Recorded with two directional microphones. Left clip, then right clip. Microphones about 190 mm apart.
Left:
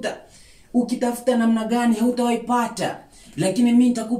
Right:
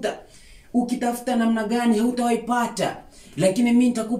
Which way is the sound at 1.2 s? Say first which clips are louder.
Left 3 dB; 10° right (ahead or behind).